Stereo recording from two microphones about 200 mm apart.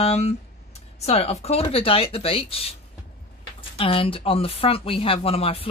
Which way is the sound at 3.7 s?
25° left (ahead or behind).